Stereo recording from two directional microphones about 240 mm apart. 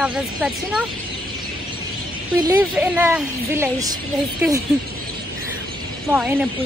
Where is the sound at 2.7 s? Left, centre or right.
Centre.